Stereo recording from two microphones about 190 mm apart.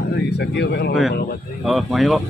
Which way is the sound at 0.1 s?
60° left (ahead or behind).